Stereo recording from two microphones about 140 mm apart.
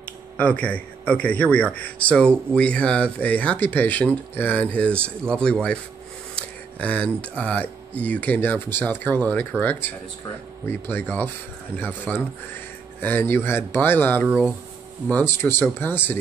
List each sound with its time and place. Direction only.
0.0 s a man's voice: 10° left (ahead or behind)
14.2 s speech: 10° right (ahead or behind)
15.0 s speech: 15° left (ahead or behind)